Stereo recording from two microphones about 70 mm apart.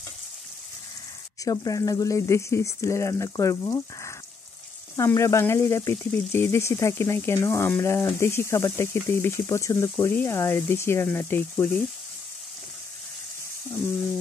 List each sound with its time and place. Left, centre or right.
1.4 s speech: left